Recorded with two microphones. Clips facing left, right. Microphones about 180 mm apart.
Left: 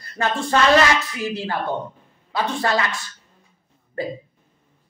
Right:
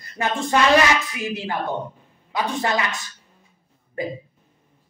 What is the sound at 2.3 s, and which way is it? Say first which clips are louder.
Speech: left 1 dB; 20° right (ahead or behind).